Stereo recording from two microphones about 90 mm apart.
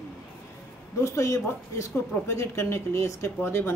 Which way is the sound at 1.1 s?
35° left (ahead or behind).